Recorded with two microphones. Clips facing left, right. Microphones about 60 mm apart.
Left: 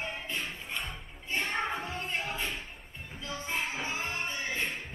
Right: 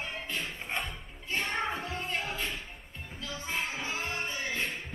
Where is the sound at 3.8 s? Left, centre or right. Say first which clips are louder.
Even; centre.